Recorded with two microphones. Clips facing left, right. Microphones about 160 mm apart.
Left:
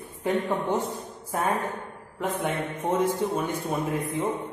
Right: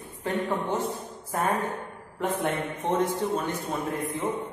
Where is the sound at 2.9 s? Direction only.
10° left (ahead or behind).